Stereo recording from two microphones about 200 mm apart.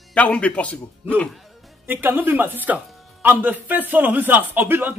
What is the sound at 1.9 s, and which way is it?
Speech, 10° right (ahead or behind).